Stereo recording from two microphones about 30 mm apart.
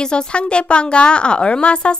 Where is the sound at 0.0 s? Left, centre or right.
Left.